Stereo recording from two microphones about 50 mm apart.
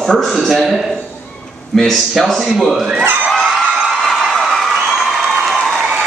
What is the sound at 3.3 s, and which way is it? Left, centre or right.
Crowd, centre.